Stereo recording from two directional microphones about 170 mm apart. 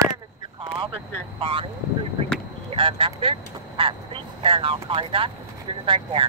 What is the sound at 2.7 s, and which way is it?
Speech, 30° right (ahead or behind).